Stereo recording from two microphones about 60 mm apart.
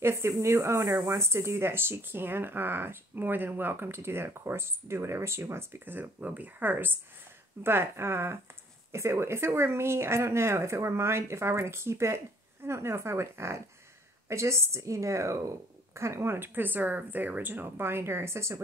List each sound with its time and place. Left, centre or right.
0.0 s speech: right
7.6 s speech: right